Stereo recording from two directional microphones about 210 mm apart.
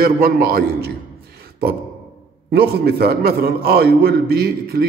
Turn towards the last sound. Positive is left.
turn(degrees=-50)  # may be behind; listen again after turning